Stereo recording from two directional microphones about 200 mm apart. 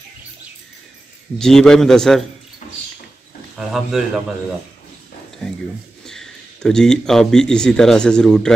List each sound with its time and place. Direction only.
1.4 s a man's voice: centre (ahead or behind)
2.6 s a sound: 35° left (ahead or behind)
3.5 s a man's voice: centre (ahead or behind)
6.0 s speech: 5° left (ahead or behind)